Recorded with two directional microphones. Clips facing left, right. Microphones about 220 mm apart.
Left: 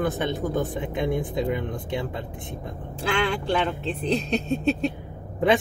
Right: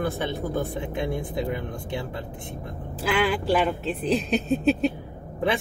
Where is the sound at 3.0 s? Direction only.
5° right (ahead or behind).